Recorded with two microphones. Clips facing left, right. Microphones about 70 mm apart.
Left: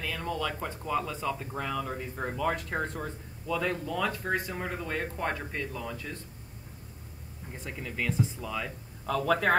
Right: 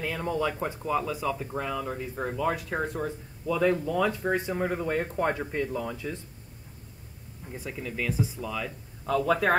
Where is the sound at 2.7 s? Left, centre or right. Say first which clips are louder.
Right 3 dB; right.